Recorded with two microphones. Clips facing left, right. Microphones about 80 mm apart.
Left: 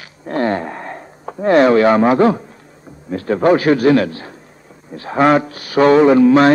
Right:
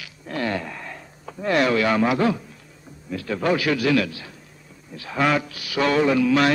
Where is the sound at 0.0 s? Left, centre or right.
Left.